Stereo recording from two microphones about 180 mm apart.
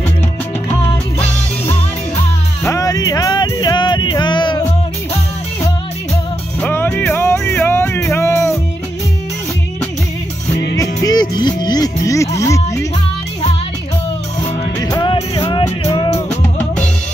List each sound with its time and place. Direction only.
2.6 s music: 20° left (ahead or behind)
6.6 s music: 10° left (ahead or behind)
10.8 s music: 20° left (ahead or behind)
14.8 s music: 20° left (ahead or behind)
16.3 s music: 5° left (ahead or behind)